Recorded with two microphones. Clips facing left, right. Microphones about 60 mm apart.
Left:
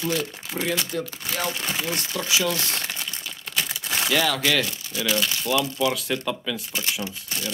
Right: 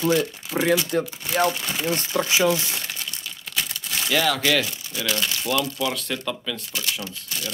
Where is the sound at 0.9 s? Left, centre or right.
Right.